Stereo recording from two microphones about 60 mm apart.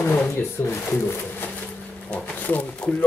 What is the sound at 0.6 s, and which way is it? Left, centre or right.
Speech, left.